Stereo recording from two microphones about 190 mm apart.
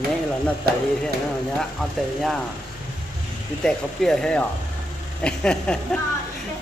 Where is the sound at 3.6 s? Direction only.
5° left (ahead or behind).